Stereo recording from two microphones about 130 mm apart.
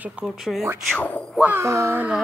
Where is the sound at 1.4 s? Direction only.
20° right (ahead or behind).